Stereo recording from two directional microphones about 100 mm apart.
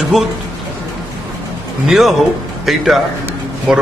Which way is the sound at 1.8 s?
5° right (ahead or behind).